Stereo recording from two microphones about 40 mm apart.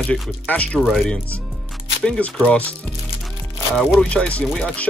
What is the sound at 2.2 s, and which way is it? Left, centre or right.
Speech, left.